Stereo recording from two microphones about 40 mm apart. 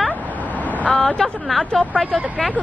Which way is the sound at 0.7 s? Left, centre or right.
Left.